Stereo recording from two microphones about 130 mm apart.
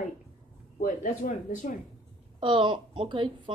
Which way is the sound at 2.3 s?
40° right (ahead or behind).